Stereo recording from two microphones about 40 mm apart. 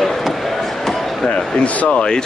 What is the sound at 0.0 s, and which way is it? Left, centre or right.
Basketball bounce, centre.